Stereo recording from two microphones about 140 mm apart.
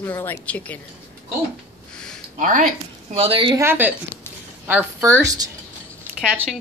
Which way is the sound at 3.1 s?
40° right (ahead or behind).